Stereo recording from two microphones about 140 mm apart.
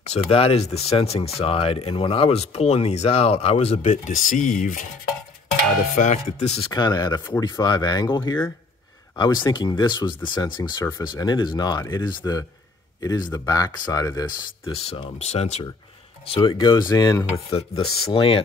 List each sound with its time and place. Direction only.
0.1 s speech: 45° left (ahead or behind); by 4.8 s 65° left (ahead or behind)
5.9 s speech: 55° left (ahead or behind)
6.7 s speech: 30° left (ahead or behind)
14.7 s speech: 40° left (ahead or behind)
16.3 s speech: 30° left (ahead or behind)
17.5 s speech: 40° left (ahead or behind)